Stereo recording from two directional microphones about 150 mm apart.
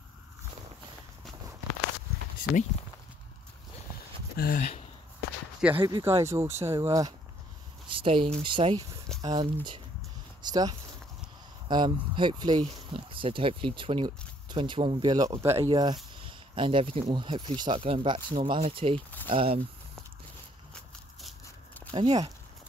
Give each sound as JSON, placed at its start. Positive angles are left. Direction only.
{"t": 2.5, "sound": "speech", "side_deg": -5}
{"t": 4.4, "sound": "speech", "side_deg": 80}
{"t": 5.6, "sound": "speech", "side_deg": -10}
{"t": 7.9, "sound": "speech", "side_deg": -35}
{"t": 15.6, "sound": "speech", "side_deg": -30}
{"t": 21.9, "sound": "speech", "side_deg": -35}